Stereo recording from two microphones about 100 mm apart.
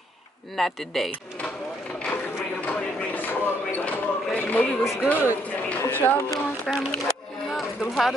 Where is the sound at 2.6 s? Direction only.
15° left (ahead or behind).